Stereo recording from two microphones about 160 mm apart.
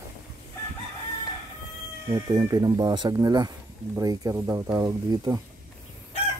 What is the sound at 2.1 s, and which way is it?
Speech, 25° right (ahead or behind).